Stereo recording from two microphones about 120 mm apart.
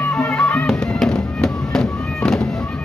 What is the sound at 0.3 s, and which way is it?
Music, 5° left (ahead or behind).